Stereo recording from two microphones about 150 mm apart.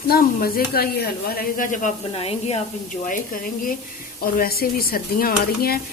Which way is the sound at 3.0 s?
65° left (ahead or behind).